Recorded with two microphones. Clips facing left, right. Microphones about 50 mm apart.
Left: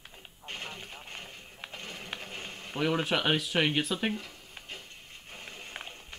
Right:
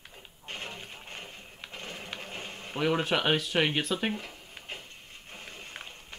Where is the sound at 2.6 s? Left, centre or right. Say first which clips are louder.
Right 1 dB; centre.